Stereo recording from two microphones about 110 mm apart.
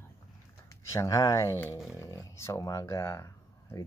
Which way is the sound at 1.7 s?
Centre (ahead or behind).